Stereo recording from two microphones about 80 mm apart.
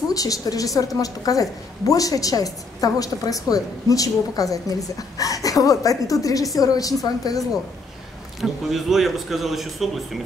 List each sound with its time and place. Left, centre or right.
0.1 s a woman's voice: left
8.4 s a man's voice: centre